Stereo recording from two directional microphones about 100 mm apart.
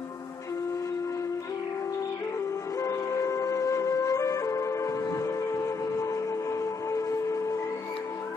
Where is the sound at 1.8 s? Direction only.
35° left (ahead or behind).